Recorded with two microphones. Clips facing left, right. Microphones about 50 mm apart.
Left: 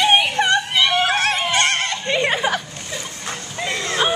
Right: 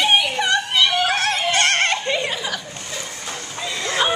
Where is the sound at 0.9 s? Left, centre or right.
Left.